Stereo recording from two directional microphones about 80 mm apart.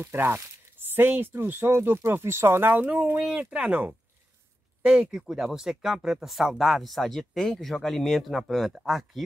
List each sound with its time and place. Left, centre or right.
0.0 s speech: right; by 9.2 s centre